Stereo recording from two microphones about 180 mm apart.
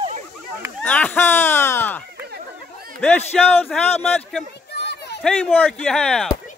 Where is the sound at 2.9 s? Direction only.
10° left (ahead or behind).